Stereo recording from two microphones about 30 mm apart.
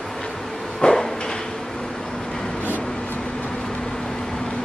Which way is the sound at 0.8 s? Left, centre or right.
Left.